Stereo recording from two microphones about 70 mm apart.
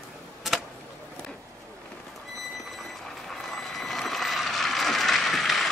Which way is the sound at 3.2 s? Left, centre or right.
Centre.